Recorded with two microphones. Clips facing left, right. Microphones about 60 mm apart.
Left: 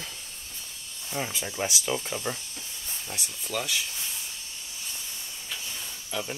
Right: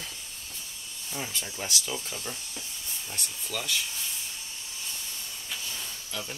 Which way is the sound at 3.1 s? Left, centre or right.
Centre.